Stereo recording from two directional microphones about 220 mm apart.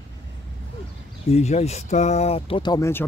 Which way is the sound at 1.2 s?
30° left (ahead or behind).